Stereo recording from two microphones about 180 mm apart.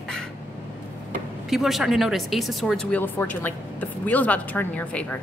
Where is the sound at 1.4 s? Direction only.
Centre (ahead or behind).